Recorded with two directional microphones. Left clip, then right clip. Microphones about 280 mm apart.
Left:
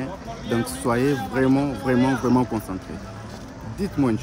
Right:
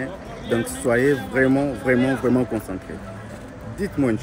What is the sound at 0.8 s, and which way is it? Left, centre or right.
Speech, centre.